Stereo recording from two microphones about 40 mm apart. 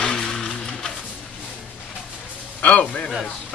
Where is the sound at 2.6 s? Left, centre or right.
Left.